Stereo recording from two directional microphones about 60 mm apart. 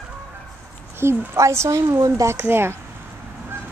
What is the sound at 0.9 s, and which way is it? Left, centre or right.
Speech, right.